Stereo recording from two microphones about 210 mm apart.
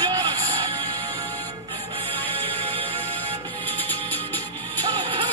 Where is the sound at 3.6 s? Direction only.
10° left (ahead or behind).